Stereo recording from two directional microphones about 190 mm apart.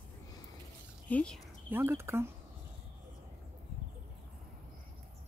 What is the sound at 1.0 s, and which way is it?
Speech, 5° left (ahead or behind).